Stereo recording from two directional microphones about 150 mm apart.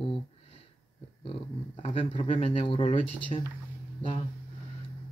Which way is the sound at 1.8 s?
40° left (ahead or behind).